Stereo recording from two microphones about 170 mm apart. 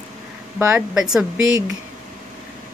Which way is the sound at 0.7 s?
Centre (ahead or behind).